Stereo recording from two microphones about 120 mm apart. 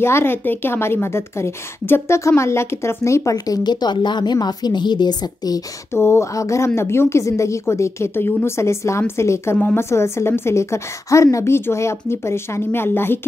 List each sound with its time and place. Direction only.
0.0 s a woman's voice: 20° left (ahead or behind); by 5.6 s 35° left (ahead or behind)
5.9 s a woman's voice: 20° left (ahead or behind)